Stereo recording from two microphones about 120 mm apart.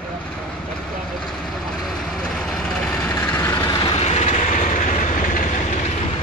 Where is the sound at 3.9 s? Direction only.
60° left (ahead or behind); by 5.8 s 90° left.